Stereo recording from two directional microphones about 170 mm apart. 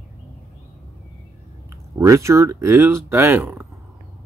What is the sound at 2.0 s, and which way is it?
Speech, 20° right (ahead or behind).